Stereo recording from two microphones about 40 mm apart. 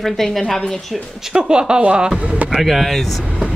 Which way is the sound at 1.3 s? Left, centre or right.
Centre.